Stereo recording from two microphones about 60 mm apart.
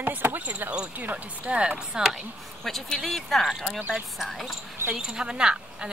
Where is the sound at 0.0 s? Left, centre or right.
Right; by 2.2 s centre.